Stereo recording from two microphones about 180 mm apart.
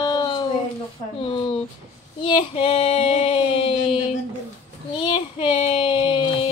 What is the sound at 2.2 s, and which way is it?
Female singing, 30° left (ahead or behind).